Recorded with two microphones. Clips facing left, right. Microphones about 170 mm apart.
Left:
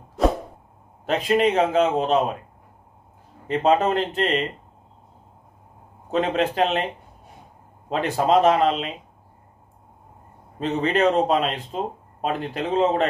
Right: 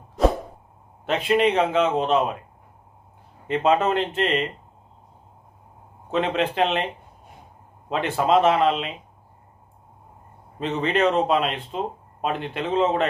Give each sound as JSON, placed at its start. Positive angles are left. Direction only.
{"t": 1.0, "sound": "speech", "side_deg": 40}
{"t": 3.4, "sound": "speech", "side_deg": 35}
{"t": 6.1, "sound": "speech", "side_deg": 40}
{"t": 7.9, "sound": "speech", "side_deg": 40}
{"t": 10.6, "sound": "speech", "side_deg": 40}